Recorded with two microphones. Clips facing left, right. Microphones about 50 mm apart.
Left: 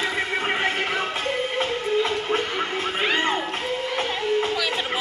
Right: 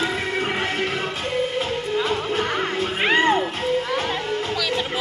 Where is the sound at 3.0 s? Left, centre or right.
Right.